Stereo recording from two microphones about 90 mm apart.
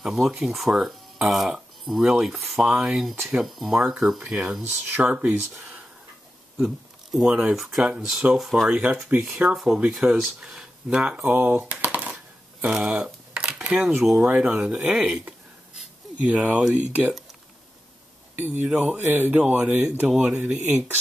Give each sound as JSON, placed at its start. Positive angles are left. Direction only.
{"t": 0.0, "sound": "speech", "side_deg": -5}
{"t": 4.6, "sound": "speech", "side_deg": -25}
{"t": 6.6, "sound": "speech", "side_deg": -5}
{"t": 12.6, "sound": "a sound", "side_deg": -10}
{"t": 13.7, "sound": "speech", "side_deg": -10}
{"t": 18.3, "sound": "speech", "side_deg": -20}